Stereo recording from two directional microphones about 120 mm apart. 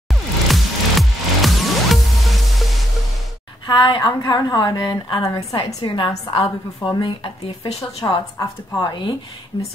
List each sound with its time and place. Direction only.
0.1 s music: centre (ahead or behind)
3.6 s a woman's voice: 40° left (ahead or behind)
5.8 s a woman's voice: 40° left (ahead or behind)